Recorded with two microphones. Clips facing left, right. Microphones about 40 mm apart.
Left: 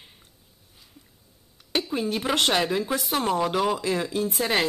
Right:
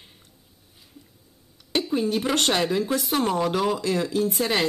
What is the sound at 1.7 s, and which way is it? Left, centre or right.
Speech, centre.